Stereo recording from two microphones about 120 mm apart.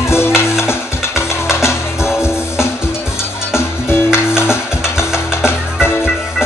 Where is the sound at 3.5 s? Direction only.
20° left (ahead or behind).